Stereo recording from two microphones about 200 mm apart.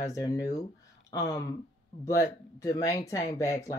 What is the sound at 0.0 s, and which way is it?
Speech, 15° left (ahead or behind).